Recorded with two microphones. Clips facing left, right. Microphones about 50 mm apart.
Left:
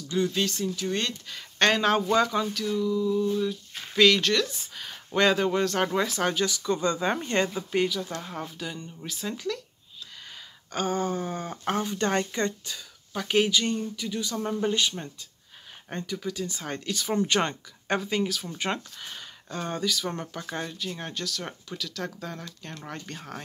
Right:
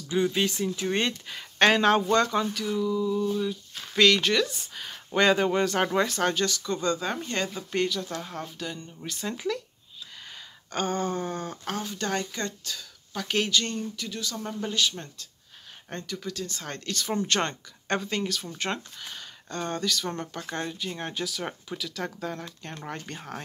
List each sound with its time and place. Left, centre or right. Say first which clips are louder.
0.1 s speech: right 1 dB; centre
1.6 s speech: right 2 dB; centre
2.5 s speech: left 1 dB; centre; by 7.5 s left
7.5 s speech: left 2 dB; centre
10.7 s speech: left 1 dB; centre
11.5 s speech: left 5 dB; left
15.9 s speech: left 2 dB; centre
20.7 s speech: right 1 dB; centre